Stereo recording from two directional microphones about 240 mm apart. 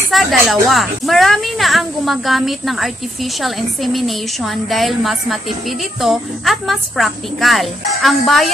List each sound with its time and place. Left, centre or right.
0.1 s a woman's voice: centre